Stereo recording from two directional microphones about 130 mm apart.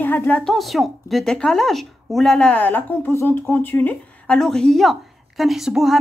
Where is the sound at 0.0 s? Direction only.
15° left (ahead or behind).